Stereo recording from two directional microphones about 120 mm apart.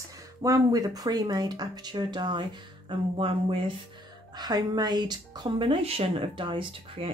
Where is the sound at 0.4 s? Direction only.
30° right (ahead or behind); by 3.7 s 45° right (ahead or behind).